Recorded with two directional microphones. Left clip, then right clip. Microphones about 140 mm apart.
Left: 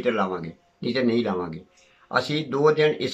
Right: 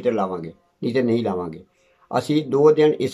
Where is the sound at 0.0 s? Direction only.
40° right (ahead or behind).